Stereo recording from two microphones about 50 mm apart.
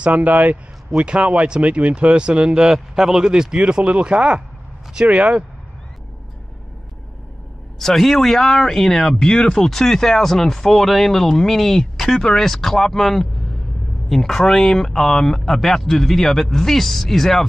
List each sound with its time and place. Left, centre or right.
0.0 s speech: right
7.8 s speech: centre